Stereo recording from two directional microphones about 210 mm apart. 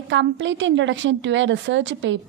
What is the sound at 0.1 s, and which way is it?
A woman's voice, 60° right (ahead or behind).